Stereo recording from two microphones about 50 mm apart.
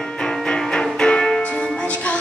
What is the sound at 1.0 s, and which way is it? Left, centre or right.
Music, centre.